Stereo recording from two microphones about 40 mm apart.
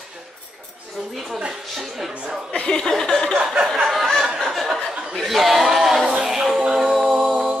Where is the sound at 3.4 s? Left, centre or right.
Centre.